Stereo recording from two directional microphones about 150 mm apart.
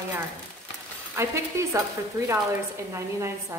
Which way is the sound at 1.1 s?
20° right (ahead or behind).